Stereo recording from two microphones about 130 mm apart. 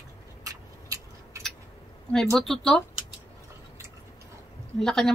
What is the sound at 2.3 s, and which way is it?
Speech, 5° left (ahead or behind).